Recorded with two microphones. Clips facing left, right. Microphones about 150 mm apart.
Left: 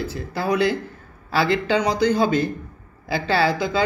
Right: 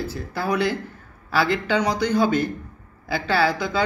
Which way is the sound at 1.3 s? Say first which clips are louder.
Left 2 dB; 25° left (ahead or behind).